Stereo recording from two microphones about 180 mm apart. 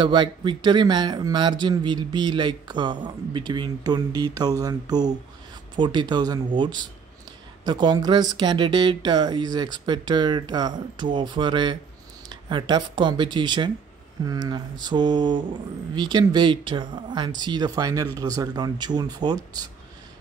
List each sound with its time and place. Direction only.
0.0 s speech: 25° right (ahead or behind)